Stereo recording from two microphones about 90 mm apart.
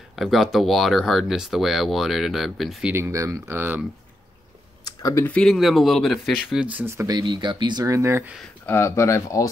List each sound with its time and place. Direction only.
0.1 s speech: centre (ahead or behind)
2.9 s speech: 35° right (ahead or behind)
5.4 s speech: centre (ahead or behind)
6.7 s speech: 25° right (ahead or behind)
7.1 s speech: 50° right (ahead or behind)
7.8 s speech: 35° right (ahead or behind)
8.6 s speech: 25° left (ahead or behind)